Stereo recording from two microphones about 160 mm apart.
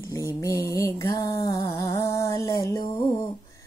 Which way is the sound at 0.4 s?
20° left (ahead or behind).